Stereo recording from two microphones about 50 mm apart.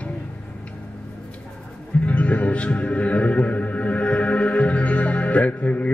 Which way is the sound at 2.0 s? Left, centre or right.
Left.